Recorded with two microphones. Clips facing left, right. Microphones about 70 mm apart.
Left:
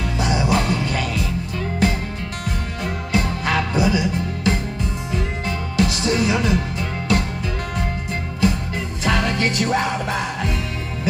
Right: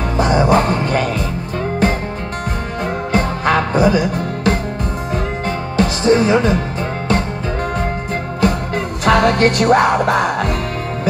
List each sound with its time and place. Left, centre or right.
0.2 s music: right
5.8 s music: right
8.4 s music: right